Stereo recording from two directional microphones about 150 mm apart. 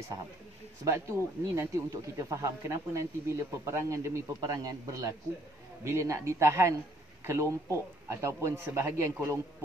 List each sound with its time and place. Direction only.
0.8 s speech: 20° right (ahead or behind)